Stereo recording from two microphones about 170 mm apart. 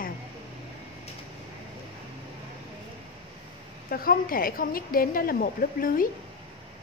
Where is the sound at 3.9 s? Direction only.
60° left (ahead or behind).